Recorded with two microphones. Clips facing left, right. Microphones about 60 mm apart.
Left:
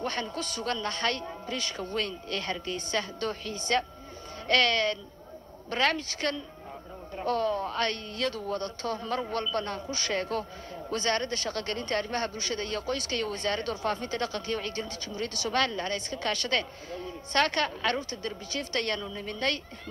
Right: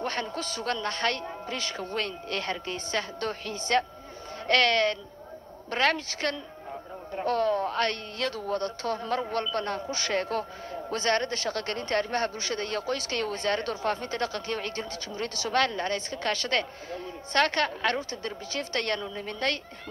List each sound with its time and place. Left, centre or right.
0.0 s speech: right
9.8 s speech: right